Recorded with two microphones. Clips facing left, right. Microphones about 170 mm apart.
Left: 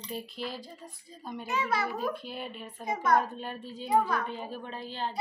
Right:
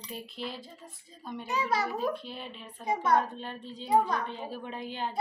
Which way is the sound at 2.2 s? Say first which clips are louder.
Left 3 dB; 5° left (ahead or behind).